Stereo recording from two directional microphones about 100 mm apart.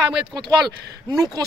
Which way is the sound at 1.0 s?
45° right (ahead or behind).